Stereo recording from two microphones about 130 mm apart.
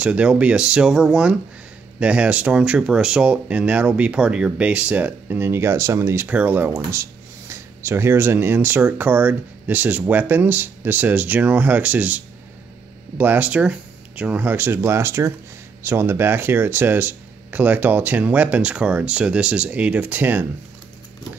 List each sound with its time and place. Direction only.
0.0 s speech: 10° right (ahead or behind)
13.2 s speech: 15° right (ahead or behind)